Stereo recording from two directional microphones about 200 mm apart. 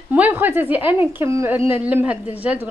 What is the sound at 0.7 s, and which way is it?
A woman's voice, 10° right (ahead or behind).